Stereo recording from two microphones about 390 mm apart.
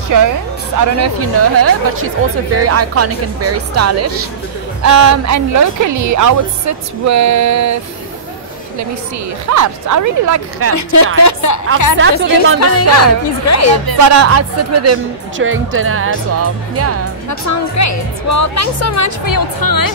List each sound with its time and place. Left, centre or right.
0.1 s a woman's voice: right
9.5 s a woman's voice: right
11.2 s a woman's voice: left
12.0 s speech: right
12.5 s speech: left
13.8 s speech: right
17.3 s a woman's voice: left